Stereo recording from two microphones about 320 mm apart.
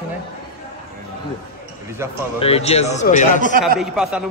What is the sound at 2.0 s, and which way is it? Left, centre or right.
Speech, centre.